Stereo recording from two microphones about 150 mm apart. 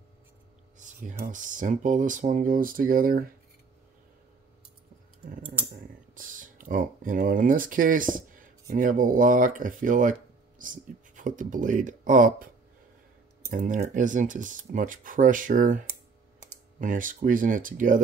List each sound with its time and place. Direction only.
0.7 s a sound: 55° right (ahead or behind)
1.1 s speech: 65° right (ahead or behind)
6.1 s speech: 65° right (ahead or behind)
13.5 s speech: 55° right (ahead or behind)